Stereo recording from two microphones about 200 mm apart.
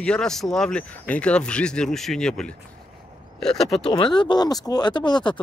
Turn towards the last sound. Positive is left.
turn(degrees=20)  # may be behind; listen again after turning